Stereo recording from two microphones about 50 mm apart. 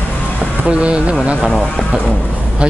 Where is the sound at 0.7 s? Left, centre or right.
Right.